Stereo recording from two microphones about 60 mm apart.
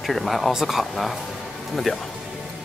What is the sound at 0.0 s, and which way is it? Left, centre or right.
Speech, centre.